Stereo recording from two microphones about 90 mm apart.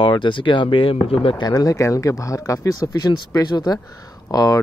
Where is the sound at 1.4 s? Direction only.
45° left (ahead or behind).